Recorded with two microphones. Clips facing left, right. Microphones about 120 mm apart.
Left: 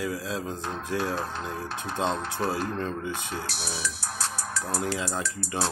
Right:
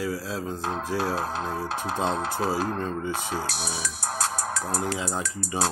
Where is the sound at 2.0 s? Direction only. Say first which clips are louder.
Right 1 dB; 45° right (ahead or behind).